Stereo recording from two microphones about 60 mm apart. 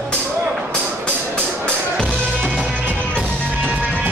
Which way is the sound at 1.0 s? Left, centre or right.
Centre.